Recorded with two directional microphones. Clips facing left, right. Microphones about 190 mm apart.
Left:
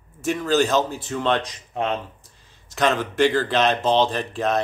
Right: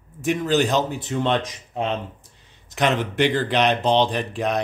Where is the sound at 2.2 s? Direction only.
20° right (ahead or behind).